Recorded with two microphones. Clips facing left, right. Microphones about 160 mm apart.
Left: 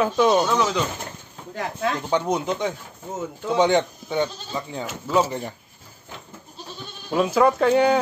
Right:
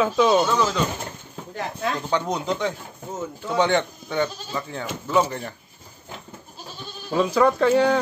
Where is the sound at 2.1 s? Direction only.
20° left (ahead or behind).